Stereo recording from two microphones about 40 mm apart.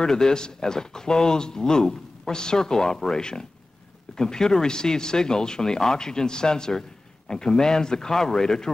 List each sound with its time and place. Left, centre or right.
0.0 s speech: centre